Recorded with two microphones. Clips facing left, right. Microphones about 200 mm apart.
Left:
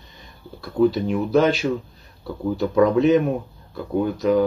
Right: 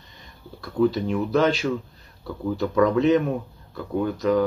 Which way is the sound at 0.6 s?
30° left (ahead or behind).